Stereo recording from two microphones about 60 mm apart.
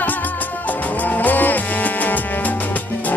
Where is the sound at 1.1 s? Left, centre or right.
Left.